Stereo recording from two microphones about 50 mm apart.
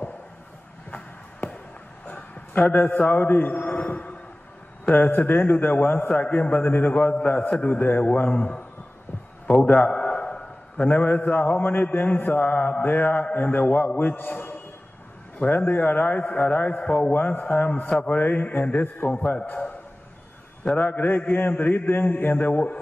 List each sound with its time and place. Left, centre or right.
0.9 s music: left
2.0 s a sound: left
3.1 s a man's voice: left
4.9 s mantra: left
6.0 s speech: left
6.5 s mantra: left
7.0 s mantra: left
8.3 s speech: left
9.7 s a sound: left
10.9 s mantra: left
17.5 s mantra: left
20.7 s mantra: left
21.3 s mantra: left